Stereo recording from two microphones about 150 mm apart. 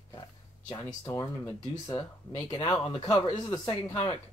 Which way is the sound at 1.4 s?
20° left (ahead or behind).